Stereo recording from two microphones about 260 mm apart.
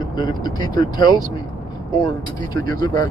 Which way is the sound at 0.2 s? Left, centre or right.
Centre.